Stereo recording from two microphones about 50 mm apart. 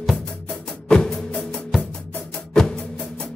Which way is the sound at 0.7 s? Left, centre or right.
Centre.